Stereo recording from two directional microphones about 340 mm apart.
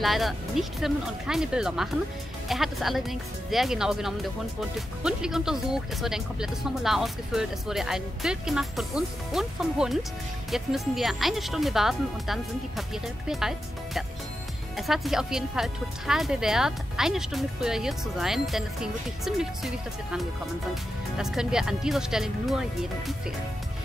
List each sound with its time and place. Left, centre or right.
0.0 s speech: centre